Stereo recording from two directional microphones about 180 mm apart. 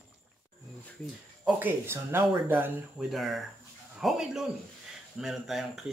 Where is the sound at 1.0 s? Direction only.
5° right (ahead or behind).